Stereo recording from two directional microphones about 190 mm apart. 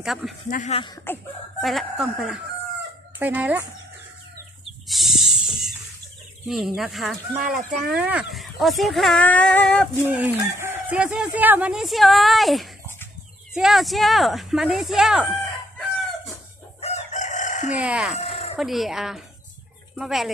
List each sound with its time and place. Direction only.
0.0 s speech: centre (ahead or behind)
0.5 s speech: 40° left (ahead or behind)
1.1 s chicken: 10° left (ahead or behind)
1.6 s speech: centre (ahead or behind)
4.8 s snake: centre (ahead or behind)
6.4 s speech: centre (ahead or behind)
10.0 s speech: 10° right (ahead or behind)
16.8 s chicken: 35° left (ahead or behind)
17.7 s speech: 5° right (ahead or behind)
18.1 s chicken: 30° left (ahead or behind)
18.6 s speech: centre (ahead or behind)